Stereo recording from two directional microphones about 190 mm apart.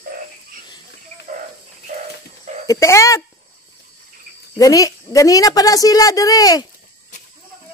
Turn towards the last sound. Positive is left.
turn(degrees=20)  # may be behind; listen again after turning